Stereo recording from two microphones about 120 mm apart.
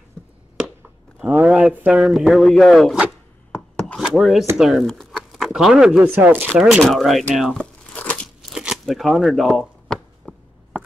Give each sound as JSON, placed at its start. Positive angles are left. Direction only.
{"t": 0.2, "sound": "a sound", "side_deg": 5}
{"t": 1.2, "sound": "speech", "side_deg": -10}
{"t": 3.8, "sound": "chopping", "side_deg": 5}
{"t": 4.6, "sound": "speech", "side_deg": -5}
{"t": 5.1, "sound": "a sound", "side_deg": -5}
{"t": 6.1, "sound": "speech", "side_deg": -15}
{"t": 7.5, "sound": "crumpling", "side_deg": 10}
{"t": 8.5, "sound": "speech", "side_deg": -5}
{"t": 10.3, "sound": "a sound", "side_deg": 15}